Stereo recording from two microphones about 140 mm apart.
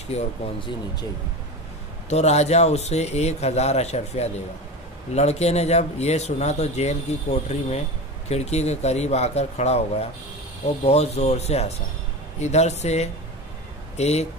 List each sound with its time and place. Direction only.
0.1 s speech: 35° left (ahead or behind)
2.0 s speech: 50° left (ahead or behind)